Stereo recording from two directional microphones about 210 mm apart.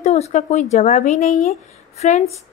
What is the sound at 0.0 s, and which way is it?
Speech, 30° left (ahead or behind).